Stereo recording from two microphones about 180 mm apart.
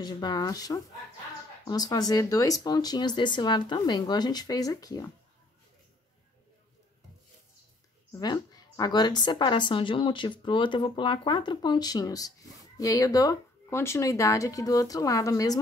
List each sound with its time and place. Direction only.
0.0 s a woman's voice: 20° left (ahead or behind)
8.1 s a woman's voice: 20° left (ahead or behind)